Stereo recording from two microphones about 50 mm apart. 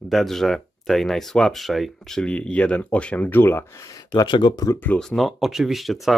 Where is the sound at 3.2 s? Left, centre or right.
Left.